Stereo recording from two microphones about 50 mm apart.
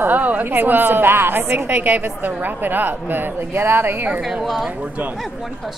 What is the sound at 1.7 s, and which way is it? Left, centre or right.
A woman's voice, right.